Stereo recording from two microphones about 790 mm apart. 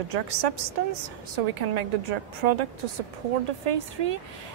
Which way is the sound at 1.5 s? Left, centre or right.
Right.